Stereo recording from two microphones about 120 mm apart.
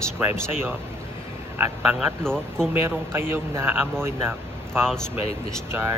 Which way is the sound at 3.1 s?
20° right (ahead or behind).